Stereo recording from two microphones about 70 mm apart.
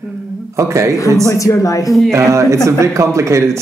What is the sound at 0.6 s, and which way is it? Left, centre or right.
Speech, right.